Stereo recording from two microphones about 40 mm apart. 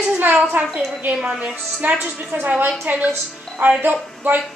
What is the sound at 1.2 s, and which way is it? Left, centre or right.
Speech, right.